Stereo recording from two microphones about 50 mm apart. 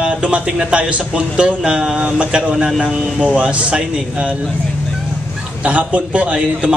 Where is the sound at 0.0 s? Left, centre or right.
Right.